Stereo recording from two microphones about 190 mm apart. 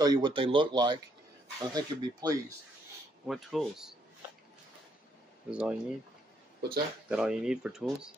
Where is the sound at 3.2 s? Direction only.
Centre (ahead or behind).